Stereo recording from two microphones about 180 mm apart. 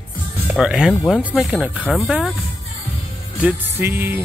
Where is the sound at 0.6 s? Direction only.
5° right (ahead or behind).